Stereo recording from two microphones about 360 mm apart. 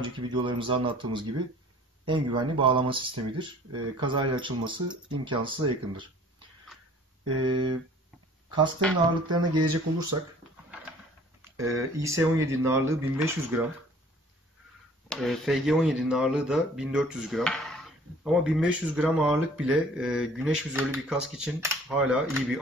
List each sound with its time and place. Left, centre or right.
0.0 s speech: centre
7.2 s speech: centre
12.0 s speech: centre
15.0 s speech: centre